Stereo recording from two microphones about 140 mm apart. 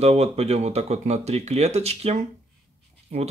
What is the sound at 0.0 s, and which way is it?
Speech, 50° right (ahead or behind).